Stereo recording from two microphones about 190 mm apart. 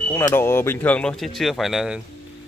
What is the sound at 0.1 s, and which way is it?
Speech, 10° left (ahead or behind).